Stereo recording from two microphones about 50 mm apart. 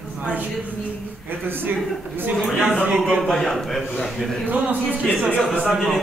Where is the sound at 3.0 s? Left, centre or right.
Right.